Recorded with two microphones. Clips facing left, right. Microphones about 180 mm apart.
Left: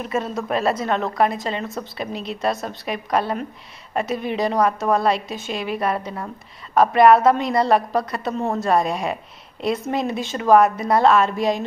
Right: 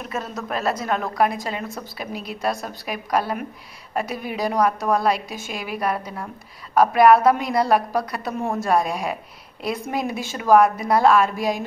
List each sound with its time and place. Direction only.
0.0 s a woman's voice: centre (ahead or behind)